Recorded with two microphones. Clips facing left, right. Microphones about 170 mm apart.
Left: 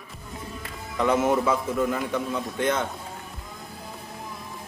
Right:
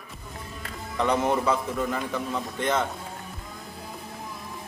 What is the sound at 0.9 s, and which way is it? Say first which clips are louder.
A man's voice: left 2 dB; centre (ahead or behind).